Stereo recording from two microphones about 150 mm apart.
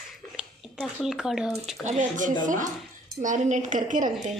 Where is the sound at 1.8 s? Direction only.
55° right (ahead or behind).